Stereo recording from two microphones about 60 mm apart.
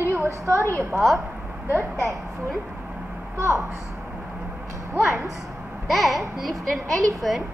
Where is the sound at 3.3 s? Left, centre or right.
Right.